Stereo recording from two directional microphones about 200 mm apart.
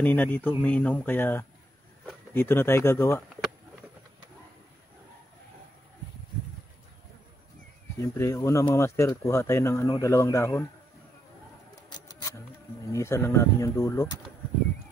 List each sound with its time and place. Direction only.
0.0 s speech: 10° left (ahead or behind)
8.0 s speech: 15° left (ahead or behind)
11.9 s a sound: 20° left (ahead or behind)
12.9 s speech: 15° left (ahead or behind)